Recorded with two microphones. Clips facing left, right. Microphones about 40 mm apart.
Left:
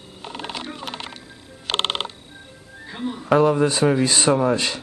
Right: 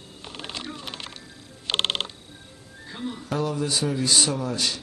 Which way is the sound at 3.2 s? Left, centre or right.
Left.